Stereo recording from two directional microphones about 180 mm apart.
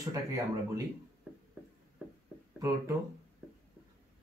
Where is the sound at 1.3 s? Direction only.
5° right (ahead or behind).